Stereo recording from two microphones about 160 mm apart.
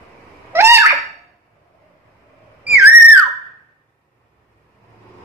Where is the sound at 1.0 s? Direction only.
Centre (ahead or behind).